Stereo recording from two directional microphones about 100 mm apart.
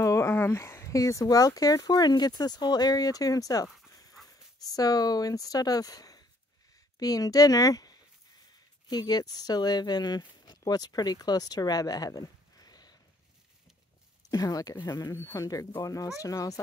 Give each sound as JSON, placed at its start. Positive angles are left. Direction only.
{"t": 0.0, "sound": "speech", "side_deg": 30}
{"t": 14.3, "sound": "speech", "side_deg": 35}